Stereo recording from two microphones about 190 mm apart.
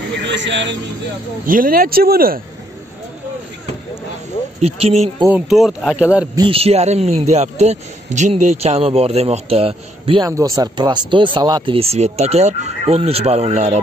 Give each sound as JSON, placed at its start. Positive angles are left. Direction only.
{"t": 0.1, "sound": "a man's voice", "side_deg": -70}
{"t": 1.4, "sound": "speech", "side_deg": -45}
{"t": 4.6, "sound": "speech", "side_deg": -30}
{"t": 5.5, "sound": "speech", "side_deg": 0}
{"t": 6.5, "sound": "speech", "side_deg": -35}
{"t": 10.3, "sound": "speech", "side_deg": -20}